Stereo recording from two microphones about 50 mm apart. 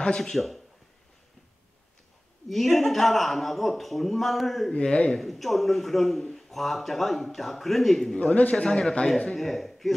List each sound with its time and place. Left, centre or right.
0.2 s speech: centre
2.5 s speech: centre
4.7 s a man's voice: centre
5.1 s speech: centre
8.2 s a man's voice: left; by 9.9 s centre